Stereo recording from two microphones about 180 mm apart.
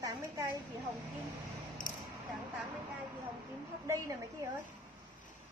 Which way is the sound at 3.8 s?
15° right (ahead or behind).